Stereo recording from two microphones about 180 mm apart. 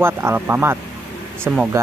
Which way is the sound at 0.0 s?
15° right (ahead or behind).